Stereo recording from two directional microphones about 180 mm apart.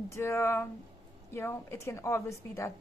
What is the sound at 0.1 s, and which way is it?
A woman's voice, 15° left (ahead or behind).